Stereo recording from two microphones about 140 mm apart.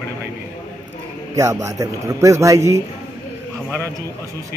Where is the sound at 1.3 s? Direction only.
20° right (ahead or behind).